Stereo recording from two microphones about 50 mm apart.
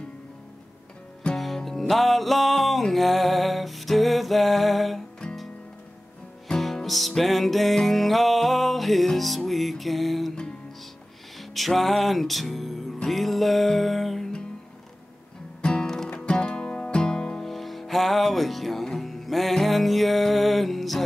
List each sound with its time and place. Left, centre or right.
1.3 s music: centre
6.6 s music: centre
11.3 s music: centre
15.6 s music: centre
17.5 s music: centre